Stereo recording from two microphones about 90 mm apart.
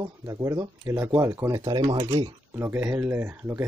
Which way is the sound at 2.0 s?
45° right (ahead or behind).